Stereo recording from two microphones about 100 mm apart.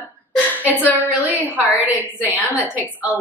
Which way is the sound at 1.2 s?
15° right (ahead or behind).